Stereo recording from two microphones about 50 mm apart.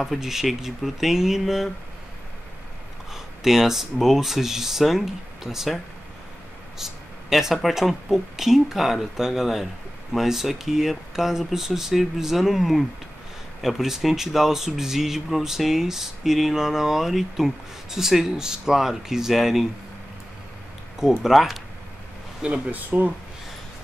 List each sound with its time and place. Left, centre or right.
0.0 s speech: centre
3.1 s speech: centre
6.8 s speech: centre
21.0 s speech: centre
22.4 s speech: right
22.8 s speech: right